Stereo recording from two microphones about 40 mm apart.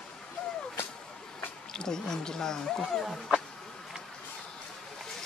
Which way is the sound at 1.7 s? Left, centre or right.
Centre.